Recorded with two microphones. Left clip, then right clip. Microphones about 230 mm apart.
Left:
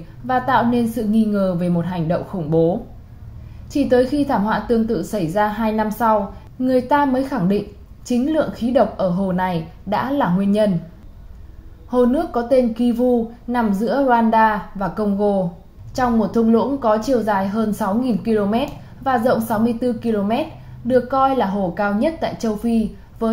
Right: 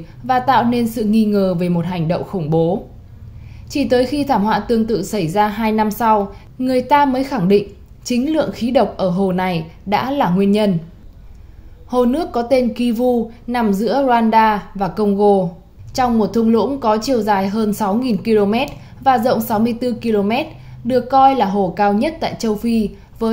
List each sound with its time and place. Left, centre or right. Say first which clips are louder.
0.3 s a woman's voice: right 3 dB; right
11.9 s a woman's voice: right 1 dB; right